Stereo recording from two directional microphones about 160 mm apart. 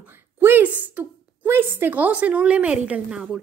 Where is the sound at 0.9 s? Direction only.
15° right (ahead or behind).